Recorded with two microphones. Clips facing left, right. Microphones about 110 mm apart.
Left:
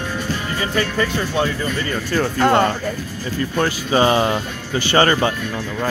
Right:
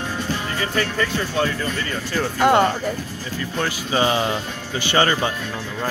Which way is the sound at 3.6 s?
40° left (ahead or behind).